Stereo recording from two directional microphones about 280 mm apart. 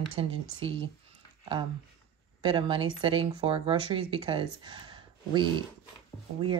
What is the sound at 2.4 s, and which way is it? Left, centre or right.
Speech, centre.